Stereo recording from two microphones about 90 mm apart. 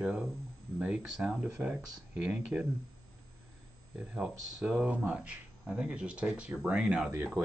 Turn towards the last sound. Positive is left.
turn(degrees=-20)  # may be behind; listen again after turning